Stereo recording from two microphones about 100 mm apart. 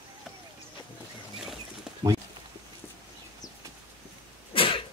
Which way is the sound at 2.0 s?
40° right (ahead or behind).